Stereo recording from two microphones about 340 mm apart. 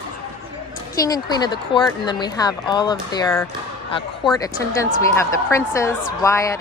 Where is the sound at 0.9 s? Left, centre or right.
Centre.